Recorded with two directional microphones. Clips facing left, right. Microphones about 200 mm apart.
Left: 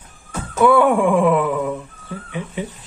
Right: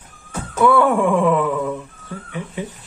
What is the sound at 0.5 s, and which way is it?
Speech, 15° left (ahead or behind).